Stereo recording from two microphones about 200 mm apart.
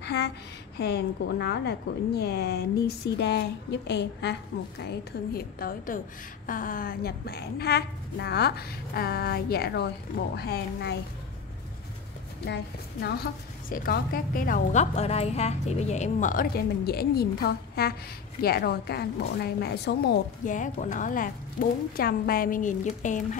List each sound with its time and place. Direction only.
0.0 s a sound: 55° left (ahead or behind)
0.7 s a woman's voice: 55° left (ahead or behind)
4.8 s a woman's voice: 50° left (ahead or behind)
13.0 s a woman's voice: 50° left (ahead or behind)